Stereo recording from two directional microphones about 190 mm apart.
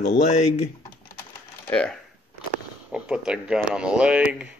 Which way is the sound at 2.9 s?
5° right (ahead or behind).